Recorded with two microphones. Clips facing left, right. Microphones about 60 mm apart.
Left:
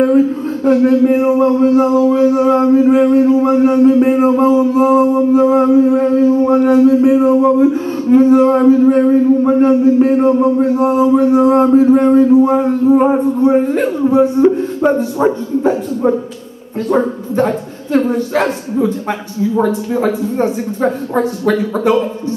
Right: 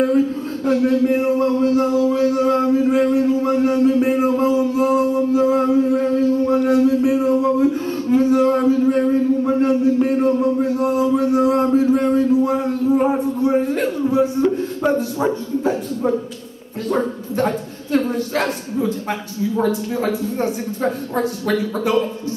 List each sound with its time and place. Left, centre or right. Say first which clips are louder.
0.0 s speech: left 6 dB; centre
0.7 s music: left 5 dB; centre
7.4 s music: left 6 dB; centre
12.8 s a sound: left 6 dB; centre
13.5 s music: left 4 dB; centre
14.9 s speech: left 5 dB; centre
15.6 s music: left 7 dB; centre
20.1 s speech: left 5 dB; centre